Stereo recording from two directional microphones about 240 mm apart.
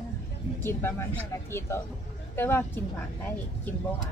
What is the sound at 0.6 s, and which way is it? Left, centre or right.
Speech, centre.